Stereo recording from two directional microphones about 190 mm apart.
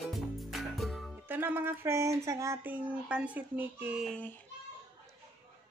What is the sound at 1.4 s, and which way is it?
Speech, 10° right (ahead or behind).